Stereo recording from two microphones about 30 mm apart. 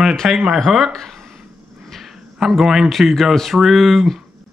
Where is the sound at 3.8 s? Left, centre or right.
Centre.